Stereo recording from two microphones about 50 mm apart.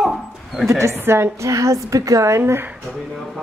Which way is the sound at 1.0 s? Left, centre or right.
Right.